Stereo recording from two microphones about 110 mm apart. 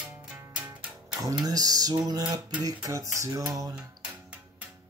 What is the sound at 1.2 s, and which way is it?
Speech, 30° right (ahead or behind).